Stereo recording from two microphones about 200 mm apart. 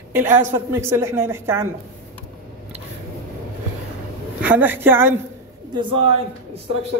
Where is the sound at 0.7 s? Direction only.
15° right (ahead or behind).